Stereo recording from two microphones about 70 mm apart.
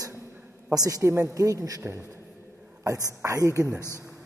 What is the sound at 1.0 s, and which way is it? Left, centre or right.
A man's voice, right.